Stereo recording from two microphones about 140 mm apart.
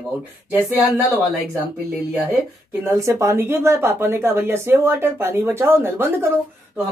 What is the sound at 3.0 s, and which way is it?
Speech, 20° right (ahead or behind).